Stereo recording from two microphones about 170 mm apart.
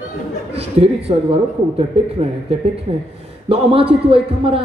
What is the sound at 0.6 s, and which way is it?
A man's voice, 35° right (ahead or behind).